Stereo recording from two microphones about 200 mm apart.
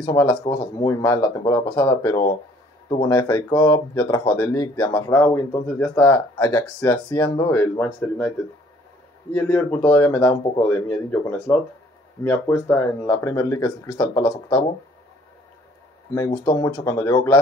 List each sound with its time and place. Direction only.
0.0 s speech: 20° left (ahead or behind)
9.3 s speech: 10° left (ahead or behind)
16.2 s speech: 20° left (ahead or behind)